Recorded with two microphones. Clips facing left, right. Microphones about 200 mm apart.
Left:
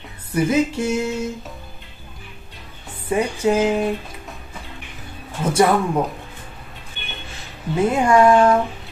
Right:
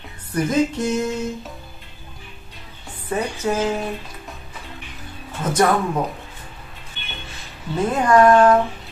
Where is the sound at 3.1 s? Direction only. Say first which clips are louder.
Left 4 dB; 15° left (ahead or behind).